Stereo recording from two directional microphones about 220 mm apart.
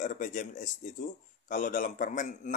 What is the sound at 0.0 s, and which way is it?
Speech, 35° left (ahead or behind).